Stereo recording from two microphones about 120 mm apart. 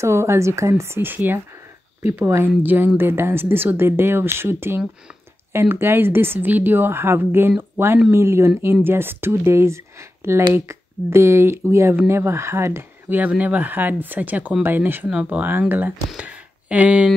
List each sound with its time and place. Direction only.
0.0 s a woman's voice: 25° right (ahead or behind)